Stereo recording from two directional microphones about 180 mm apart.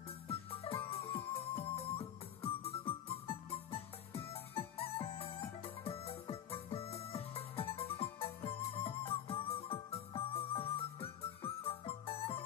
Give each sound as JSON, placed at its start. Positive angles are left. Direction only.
{"t": 0.3, "sound": "music", "side_deg": 35}